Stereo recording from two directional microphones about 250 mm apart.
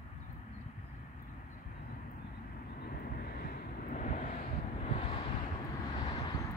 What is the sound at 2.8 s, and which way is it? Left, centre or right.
Vehicle, left.